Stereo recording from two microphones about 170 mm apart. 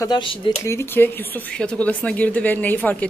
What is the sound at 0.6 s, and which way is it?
Speech, 15° left (ahead or behind).